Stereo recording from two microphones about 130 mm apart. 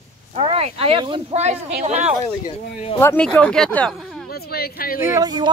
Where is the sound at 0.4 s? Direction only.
45° right (ahead or behind).